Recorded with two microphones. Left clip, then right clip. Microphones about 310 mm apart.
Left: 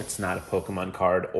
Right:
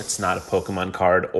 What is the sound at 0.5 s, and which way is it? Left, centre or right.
Speech, right.